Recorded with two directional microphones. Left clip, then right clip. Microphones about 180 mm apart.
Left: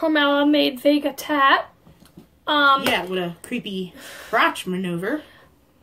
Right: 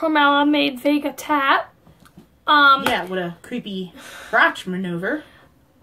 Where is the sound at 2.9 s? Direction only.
25° left (ahead or behind).